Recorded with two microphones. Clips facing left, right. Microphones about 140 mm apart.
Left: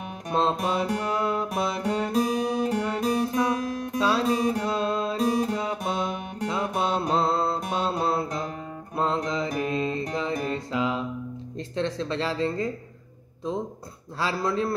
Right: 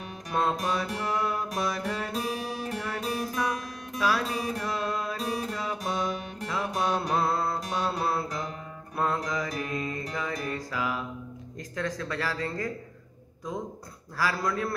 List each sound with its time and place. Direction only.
0.3 s music: 25° left (ahead or behind)
8.9 s mantra: 25° left (ahead or behind)
10.1 s music: 25° left (ahead or behind)
11.7 s speech: 25° left (ahead or behind)
14.1 s speech: 25° left (ahead or behind)